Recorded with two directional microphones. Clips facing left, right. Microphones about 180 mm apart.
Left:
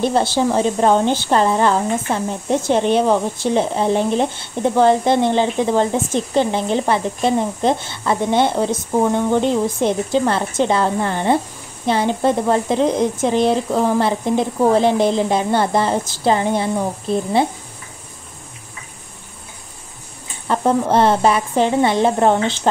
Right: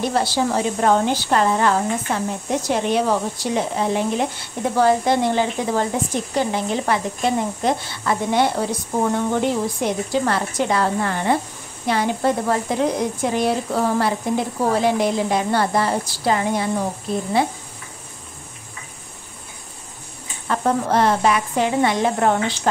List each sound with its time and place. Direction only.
0.0 s speech: 25° left (ahead or behind)
20.4 s speech: 25° left (ahead or behind)